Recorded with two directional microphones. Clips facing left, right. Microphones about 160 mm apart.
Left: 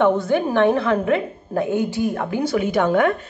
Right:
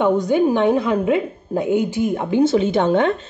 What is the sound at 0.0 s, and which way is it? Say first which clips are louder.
A woman's voice: right 2 dB; 15° right (ahead or behind).